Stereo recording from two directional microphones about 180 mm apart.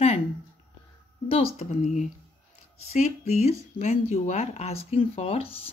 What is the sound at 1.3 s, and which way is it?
Speech, 30° left (ahead or behind).